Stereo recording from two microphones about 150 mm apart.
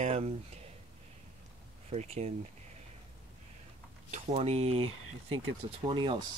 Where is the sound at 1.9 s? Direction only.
45° right (ahead or behind).